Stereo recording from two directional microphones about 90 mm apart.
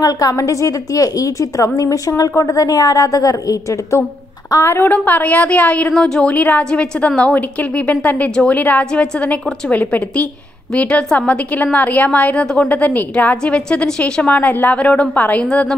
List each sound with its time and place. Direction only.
0.0 s a woman's voice: 40° left (ahead or behind)
4.5 s a woman's voice: 30° left (ahead or behind)
15.4 s a woman's voice: 5° left (ahead or behind)